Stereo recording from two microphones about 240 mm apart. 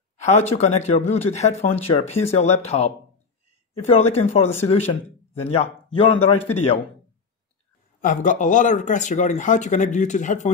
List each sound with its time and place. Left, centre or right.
0.2 s speech: left
8.0 s speech: left